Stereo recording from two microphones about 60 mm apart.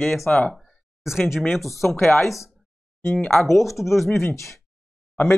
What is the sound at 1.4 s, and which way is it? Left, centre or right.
Speech, centre.